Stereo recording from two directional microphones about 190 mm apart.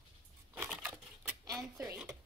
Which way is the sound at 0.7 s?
5° right (ahead or behind).